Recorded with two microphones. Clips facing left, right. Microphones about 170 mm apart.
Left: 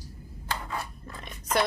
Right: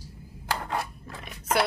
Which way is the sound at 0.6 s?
80° right.